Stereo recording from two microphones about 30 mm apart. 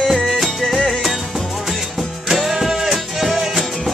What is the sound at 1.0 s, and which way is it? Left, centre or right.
Music, centre.